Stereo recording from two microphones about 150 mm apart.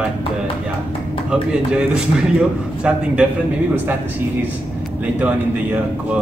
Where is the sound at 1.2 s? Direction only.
5° right (ahead or behind).